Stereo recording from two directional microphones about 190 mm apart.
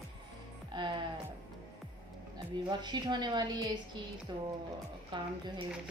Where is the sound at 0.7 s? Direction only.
25° right (ahead or behind).